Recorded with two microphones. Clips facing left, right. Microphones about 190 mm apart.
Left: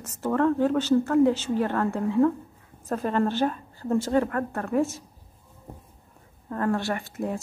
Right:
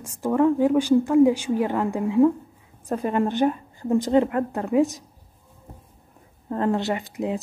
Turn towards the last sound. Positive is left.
turn(degrees=-15)  # may be behind; listen again after turning